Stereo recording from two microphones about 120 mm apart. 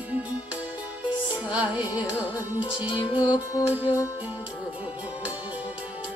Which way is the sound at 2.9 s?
40° left (ahead or behind).